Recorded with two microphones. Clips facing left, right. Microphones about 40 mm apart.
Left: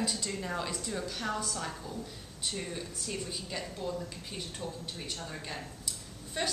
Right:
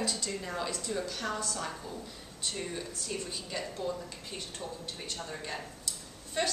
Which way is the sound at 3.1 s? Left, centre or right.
Centre.